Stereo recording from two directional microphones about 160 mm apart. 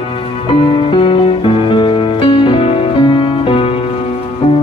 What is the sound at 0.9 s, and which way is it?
Music, 30° left (ahead or behind).